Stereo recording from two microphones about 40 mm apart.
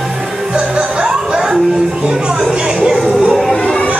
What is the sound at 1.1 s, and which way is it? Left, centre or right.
Music, centre.